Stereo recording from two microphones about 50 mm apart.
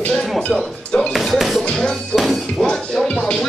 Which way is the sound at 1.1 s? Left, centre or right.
Centre.